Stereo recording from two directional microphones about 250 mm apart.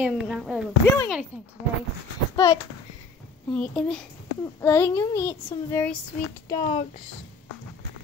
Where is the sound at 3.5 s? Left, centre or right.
Centre.